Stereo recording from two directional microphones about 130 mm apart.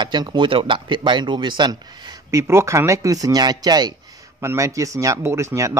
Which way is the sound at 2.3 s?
20° right (ahead or behind).